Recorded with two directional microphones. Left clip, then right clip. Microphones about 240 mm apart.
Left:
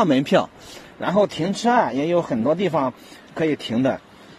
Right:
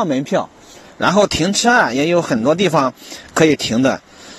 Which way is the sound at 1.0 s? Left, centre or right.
Right.